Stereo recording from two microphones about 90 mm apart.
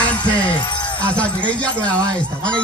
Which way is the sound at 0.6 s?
60° left (ahead or behind).